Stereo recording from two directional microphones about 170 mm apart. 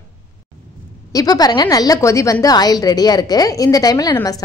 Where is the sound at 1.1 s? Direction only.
20° left (ahead or behind).